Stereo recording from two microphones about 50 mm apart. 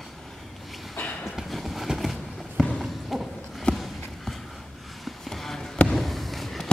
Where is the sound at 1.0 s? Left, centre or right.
Left.